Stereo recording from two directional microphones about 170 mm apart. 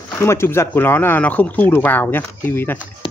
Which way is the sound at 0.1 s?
15° left (ahead or behind).